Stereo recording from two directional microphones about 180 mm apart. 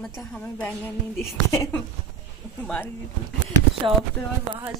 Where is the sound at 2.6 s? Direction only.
5° left (ahead or behind).